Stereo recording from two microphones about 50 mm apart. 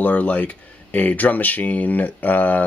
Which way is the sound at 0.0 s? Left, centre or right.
Left.